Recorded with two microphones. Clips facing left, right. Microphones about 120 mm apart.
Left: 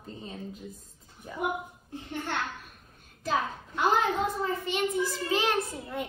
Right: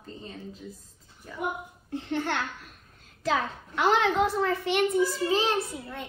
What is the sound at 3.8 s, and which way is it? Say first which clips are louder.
A woman's voice: right 3 dB; 90° right.